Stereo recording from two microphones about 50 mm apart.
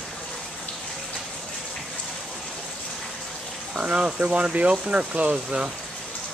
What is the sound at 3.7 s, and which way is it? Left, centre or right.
Speech, right.